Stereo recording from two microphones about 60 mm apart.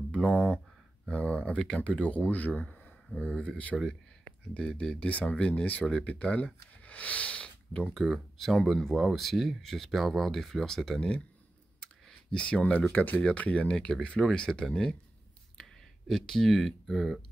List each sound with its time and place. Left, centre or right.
0.1 s speech: centre
7.9 s speech: centre
11.8 s clicking: centre
12.9 s speech: left; by 15.0 s centre
15.5 s speech: centre